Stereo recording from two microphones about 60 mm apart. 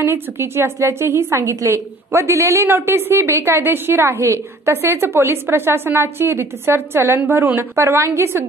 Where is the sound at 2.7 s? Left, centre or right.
Right.